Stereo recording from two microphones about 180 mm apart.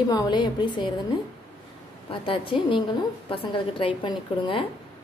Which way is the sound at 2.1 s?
30° left (ahead or behind).